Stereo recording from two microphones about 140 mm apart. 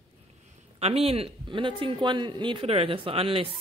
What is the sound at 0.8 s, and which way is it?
Speech, 45° right (ahead or behind).